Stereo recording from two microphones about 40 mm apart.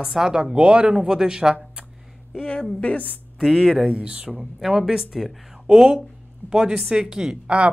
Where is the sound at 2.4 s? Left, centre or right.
Left.